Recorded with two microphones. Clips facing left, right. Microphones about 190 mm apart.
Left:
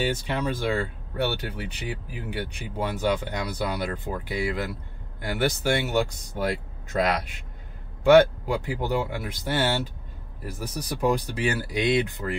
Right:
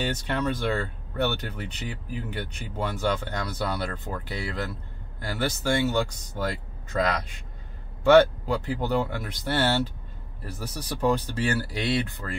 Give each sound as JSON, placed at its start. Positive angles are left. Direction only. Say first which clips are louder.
{"t": 0.0, "sound": "speech", "louder": "left 1 dB", "side_deg": 10}